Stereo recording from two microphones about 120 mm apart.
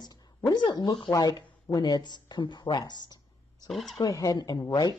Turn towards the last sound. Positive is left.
turn(degrees=30)  # may be behind; listen again after turning